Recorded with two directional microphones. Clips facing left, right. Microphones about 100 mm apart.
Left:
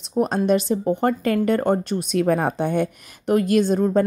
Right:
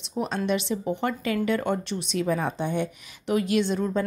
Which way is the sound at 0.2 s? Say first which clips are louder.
Left 7 dB; 40° left (ahead or behind).